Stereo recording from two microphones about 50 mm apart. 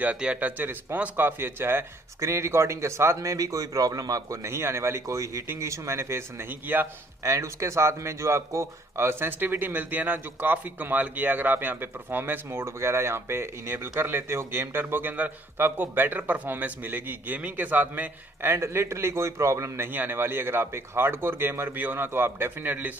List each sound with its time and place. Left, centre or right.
0.0 s speech: right
1.1 s speech: right
2.1 s speech: right
4.3 s speech: right
5.6 s speech: right
6.7 s speech: right
7.2 s speech: right
9.4 s speech: right
12.4 s speech: right
18.4 s speech: right
19.9 s speech: right